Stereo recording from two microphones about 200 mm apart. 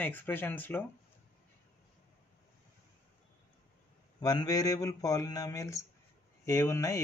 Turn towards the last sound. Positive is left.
turn(degrees=15)  # may be behind; listen again after turning